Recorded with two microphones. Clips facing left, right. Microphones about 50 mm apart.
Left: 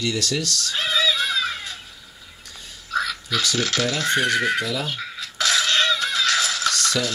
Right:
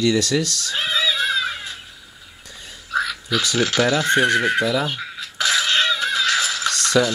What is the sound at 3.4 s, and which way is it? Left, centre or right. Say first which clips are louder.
Speech: right 4 dB; right.